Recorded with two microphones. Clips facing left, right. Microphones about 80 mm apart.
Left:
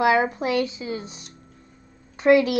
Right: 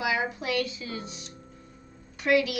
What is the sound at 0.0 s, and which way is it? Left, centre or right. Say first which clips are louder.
Speech: left 9 dB; left.